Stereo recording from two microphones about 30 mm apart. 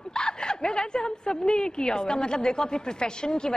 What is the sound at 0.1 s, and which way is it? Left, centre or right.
A woman's voice, left.